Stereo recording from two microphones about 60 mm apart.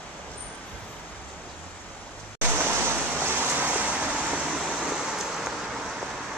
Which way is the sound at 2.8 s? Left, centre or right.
Right.